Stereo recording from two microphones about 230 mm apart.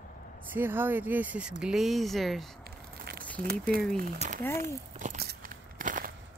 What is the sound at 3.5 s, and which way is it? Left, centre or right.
Speech, right.